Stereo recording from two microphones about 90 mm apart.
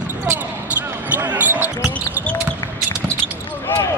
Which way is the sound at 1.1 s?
20° right (ahead or behind).